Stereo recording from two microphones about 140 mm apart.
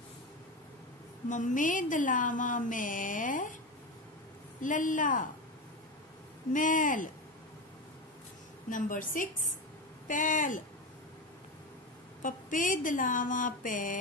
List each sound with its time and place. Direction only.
1.3 s a woman's voice: 65° left (ahead or behind)
4.6 s a woman's voice: 65° left (ahead or behind)
6.5 s a woman's voice: 70° left (ahead or behind)
8.6 s a woman's voice: 70° left (ahead or behind)
12.2 s a woman's voice: 70° left (ahead or behind)